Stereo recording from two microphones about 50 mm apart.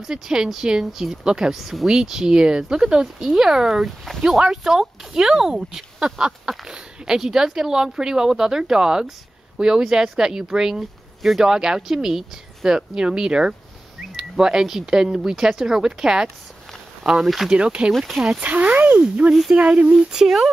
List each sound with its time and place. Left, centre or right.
0.0 s speech: centre
3.2 s speech: centre
4.2 s speech: centre
5.9 s a sound: centre
6.7 s speech: centre
11.4 s speech: centre
17.9 s speech: centre
18.4 s speech: right; by 20.4 s centre